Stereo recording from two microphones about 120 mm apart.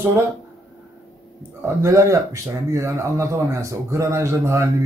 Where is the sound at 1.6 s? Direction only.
25° right (ahead or behind).